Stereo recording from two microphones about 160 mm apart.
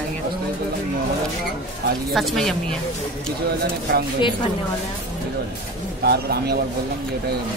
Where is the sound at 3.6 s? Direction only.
75° right (ahead or behind).